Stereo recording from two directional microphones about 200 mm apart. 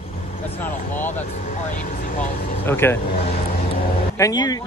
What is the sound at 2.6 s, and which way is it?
Speech, 10° left (ahead or behind).